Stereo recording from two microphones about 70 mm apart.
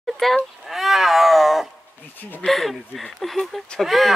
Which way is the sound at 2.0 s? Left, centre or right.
Left.